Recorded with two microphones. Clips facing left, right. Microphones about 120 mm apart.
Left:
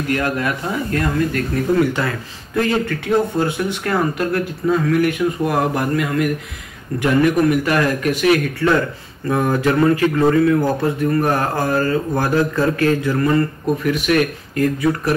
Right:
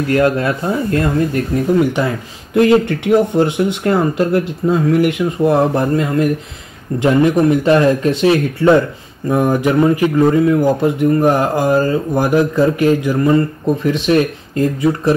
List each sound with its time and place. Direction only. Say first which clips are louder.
0.1 s speech: right 6 dB; 30° right (ahead or behind)